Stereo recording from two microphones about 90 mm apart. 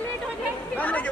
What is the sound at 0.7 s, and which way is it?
Speech, 15° left (ahead or behind).